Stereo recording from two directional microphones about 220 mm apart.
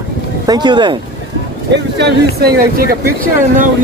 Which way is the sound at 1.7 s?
50° right (ahead or behind).